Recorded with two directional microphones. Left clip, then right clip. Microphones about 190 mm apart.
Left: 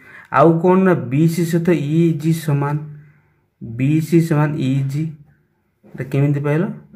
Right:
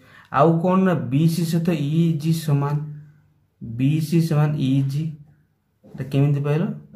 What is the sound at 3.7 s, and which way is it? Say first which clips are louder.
Speech: left 6 dB; 15° left (ahead or behind).